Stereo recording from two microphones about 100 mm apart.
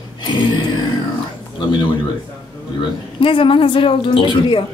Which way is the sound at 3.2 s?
60° left (ahead or behind).